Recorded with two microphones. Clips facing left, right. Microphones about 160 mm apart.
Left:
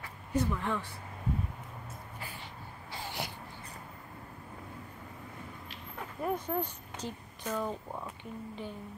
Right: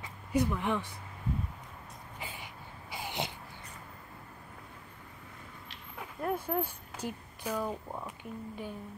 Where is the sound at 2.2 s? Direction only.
15° right (ahead or behind).